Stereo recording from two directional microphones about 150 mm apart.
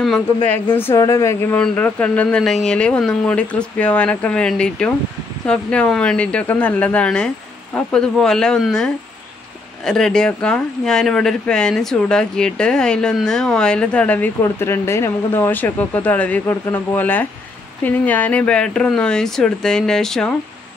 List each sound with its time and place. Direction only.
0.0 s speech: centre (ahead or behind)
0.7 s speech: 15° left (ahead or behind)
1.6 s speech: 10° left (ahead or behind)